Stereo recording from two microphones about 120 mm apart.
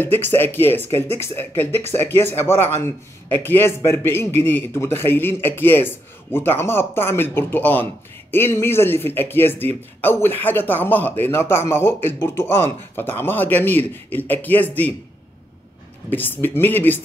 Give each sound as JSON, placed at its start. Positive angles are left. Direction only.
{"t": 0.0, "sound": "a man's voice", "side_deg": 15}
{"t": 16.1, "sound": "speech", "side_deg": 15}